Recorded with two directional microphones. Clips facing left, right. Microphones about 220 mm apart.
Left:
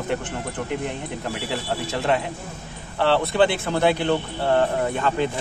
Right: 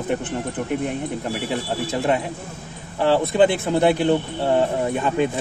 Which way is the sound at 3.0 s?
15° right (ahead or behind).